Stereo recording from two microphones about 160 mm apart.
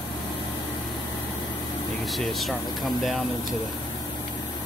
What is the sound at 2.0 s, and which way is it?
Speech, centre (ahead or behind).